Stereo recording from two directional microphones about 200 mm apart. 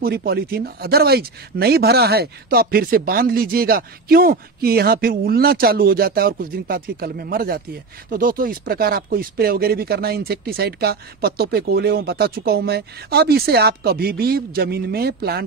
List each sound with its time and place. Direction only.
0.0 s speech: 50° right (ahead or behind)